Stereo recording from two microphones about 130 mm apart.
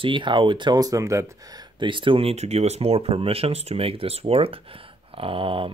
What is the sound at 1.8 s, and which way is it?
Speech, 40° right (ahead or behind).